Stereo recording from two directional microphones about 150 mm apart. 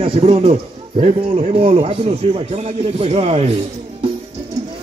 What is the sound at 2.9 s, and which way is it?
Speech, 45° right (ahead or behind).